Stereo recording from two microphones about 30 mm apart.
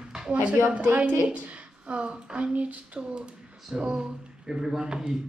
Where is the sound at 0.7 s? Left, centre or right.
Right.